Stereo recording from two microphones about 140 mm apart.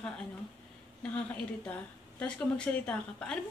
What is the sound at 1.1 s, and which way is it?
A woman's voice, 10° left (ahead or behind).